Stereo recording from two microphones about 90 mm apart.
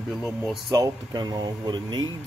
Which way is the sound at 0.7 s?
50° right (ahead or behind).